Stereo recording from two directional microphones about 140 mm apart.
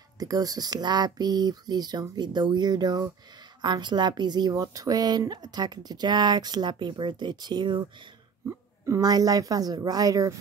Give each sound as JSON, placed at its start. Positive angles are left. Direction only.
{"t": 0.2, "sound": "a woman's voice", "side_deg": -25}
{"t": 8.5, "sound": "speech", "side_deg": -20}